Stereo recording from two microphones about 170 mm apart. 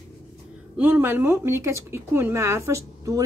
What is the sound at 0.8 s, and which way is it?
Speech, 10° right (ahead or behind).